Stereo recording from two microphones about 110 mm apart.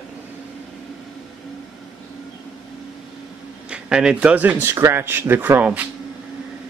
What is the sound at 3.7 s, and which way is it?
Speech, 10° right (ahead or behind).